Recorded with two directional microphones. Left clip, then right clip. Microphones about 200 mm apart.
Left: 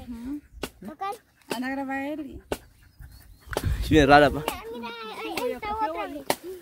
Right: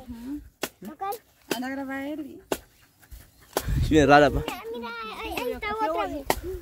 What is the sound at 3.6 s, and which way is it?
Speech, 5° left (ahead or behind).